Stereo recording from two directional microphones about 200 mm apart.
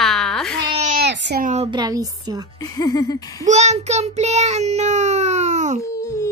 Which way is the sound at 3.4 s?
35° right (ahead or behind).